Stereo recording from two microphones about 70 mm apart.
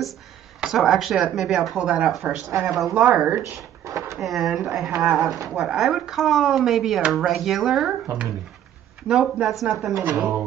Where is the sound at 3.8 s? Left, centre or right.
Right.